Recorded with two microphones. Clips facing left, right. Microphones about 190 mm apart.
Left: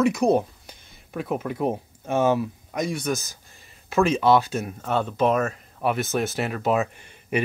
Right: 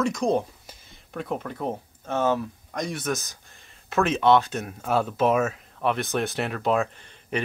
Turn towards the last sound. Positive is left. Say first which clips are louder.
# left 3 dB
turn(degrees=10)  # may be behind; listen again after turning